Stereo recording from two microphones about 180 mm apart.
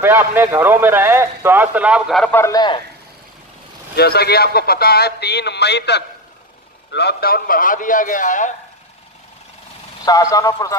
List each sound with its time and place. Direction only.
0.0 s a man's voice: 10° right (ahead or behind); by 2.8 s 20° left (ahead or behind)
3.9 s a man's voice: 60° left (ahead or behind); by 8.5 s 45° left (ahead or behind)
10.0 s a man's voice: 20° left (ahead or behind)